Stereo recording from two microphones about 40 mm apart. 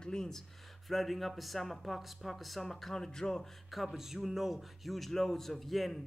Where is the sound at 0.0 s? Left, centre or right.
Centre.